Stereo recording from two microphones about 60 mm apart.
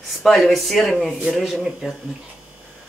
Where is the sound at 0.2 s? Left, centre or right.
Centre.